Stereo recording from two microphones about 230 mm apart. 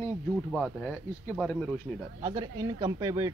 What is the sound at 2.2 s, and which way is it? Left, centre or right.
Speech, centre.